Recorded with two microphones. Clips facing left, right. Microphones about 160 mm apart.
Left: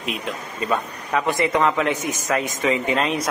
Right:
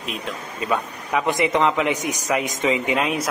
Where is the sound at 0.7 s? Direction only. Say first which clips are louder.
Even; 15° right (ahead or behind).